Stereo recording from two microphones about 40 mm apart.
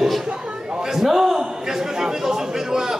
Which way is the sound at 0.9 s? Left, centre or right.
Centre.